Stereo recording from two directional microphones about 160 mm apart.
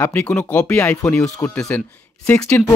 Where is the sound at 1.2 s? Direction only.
5° left (ahead or behind).